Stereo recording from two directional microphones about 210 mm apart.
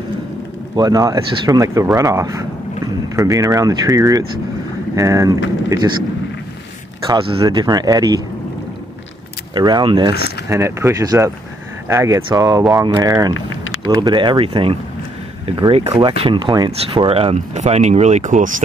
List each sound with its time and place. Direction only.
0.7 s speech: 20° right (ahead or behind)
7.1 s speech: 20° right (ahead or behind)
9.5 s speech: 20° right (ahead or behind); by 18.5 s 35° right (ahead or behind)